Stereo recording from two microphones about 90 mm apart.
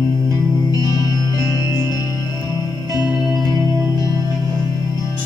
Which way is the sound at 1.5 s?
35° right (ahead or behind).